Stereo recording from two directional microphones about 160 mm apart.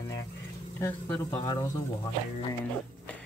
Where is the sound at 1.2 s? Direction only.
25° left (ahead or behind).